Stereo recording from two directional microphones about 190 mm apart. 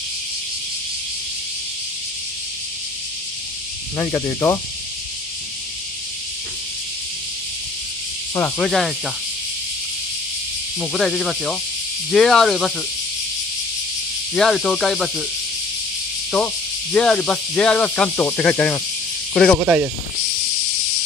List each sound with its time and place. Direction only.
3.9 s speech: 15° left (ahead or behind)
8.4 s speech: 5° left (ahead or behind)
10.8 s speech: centre (ahead or behind)
14.3 s speech: 5° left (ahead or behind)
16.3 s speech: centre (ahead or behind)
19.6 s speech: 10° right (ahead or behind)